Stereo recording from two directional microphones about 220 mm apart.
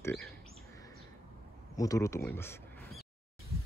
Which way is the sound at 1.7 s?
15° left (ahead or behind).